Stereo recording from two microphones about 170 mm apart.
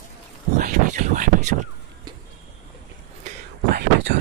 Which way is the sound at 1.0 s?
45° right (ahead or behind).